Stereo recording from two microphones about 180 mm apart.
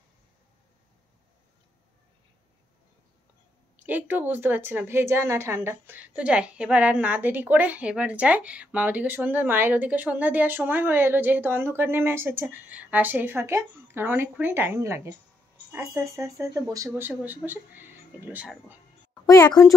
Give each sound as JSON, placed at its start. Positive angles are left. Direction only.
{"t": 3.8, "sound": "a woman's voice", "side_deg": -10}
{"t": 19.2, "sound": "a woman's voice", "side_deg": 20}